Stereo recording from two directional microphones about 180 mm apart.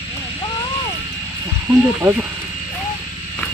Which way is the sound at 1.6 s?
5° right (ahead or behind).